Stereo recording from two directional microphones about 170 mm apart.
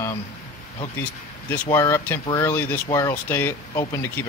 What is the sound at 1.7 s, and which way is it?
Speech, 15° left (ahead or behind).